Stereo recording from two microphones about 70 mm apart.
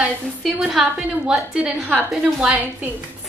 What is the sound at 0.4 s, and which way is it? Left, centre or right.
A woman's voice, centre.